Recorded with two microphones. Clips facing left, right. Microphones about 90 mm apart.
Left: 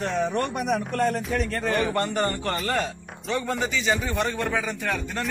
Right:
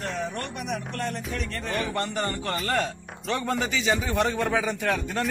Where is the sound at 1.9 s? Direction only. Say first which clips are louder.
Left 4 dB; 35° left (ahead or behind).